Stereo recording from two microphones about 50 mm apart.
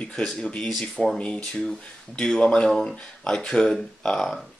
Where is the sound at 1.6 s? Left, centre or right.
Centre.